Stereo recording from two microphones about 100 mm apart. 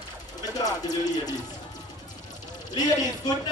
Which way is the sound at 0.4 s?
40° left (ahead or behind).